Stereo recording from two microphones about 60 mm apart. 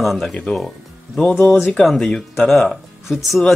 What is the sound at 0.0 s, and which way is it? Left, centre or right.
Speech, centre.